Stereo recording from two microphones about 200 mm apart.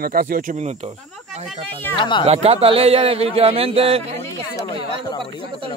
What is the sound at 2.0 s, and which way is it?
Speech, 25° left (ahead or behind).